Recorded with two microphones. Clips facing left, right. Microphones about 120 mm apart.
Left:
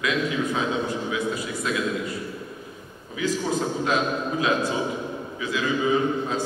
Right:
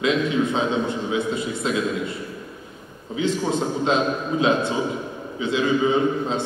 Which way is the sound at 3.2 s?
25° right (ahead or behind).